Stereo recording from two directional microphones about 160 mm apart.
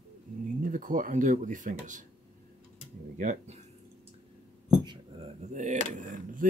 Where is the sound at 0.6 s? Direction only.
55° right (ahead or behind).